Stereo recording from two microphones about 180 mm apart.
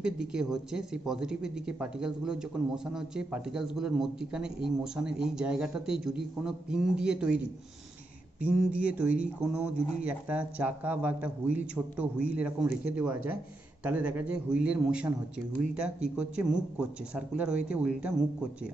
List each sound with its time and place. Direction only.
0.0 s speech: 5° right (ahead or behind)